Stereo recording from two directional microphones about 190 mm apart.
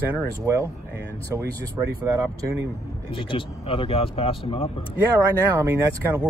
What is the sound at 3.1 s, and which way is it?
Speech, 30° left (ahead or behind).